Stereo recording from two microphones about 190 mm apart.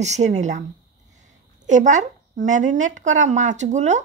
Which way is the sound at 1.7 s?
40° right (ahead or behind).